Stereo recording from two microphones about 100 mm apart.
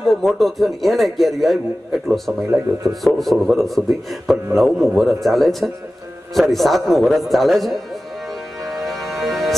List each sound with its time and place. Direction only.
0.0 s speech: centre (ahead or behind)
8.6 s music: centre (ahead or behind)